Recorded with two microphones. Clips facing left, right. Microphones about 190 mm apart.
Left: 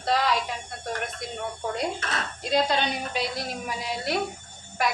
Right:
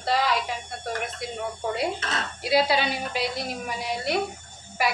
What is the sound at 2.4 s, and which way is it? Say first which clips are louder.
A woman's voice: right 2 dB; 10° right (ahead or behind).